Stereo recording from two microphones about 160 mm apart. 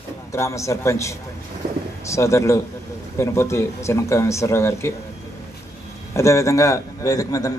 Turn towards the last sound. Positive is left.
turn(degrees=20)  # may be behind; listen again after turning